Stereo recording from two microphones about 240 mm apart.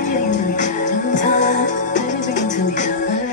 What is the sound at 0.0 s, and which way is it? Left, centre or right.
Music, left.